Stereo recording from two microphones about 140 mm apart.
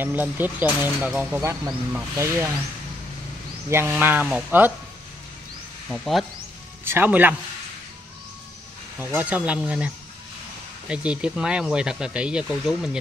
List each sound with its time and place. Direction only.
0.0 s speech: 15° right (ahead or behind)
3.7 s speech: 15° right (ahead or behind)
5.9 s speech: centre (ahead or behind)
6.8 s speech: 15° right (ahead or behind)
9.0 s speech: 10° right (ahead or behind)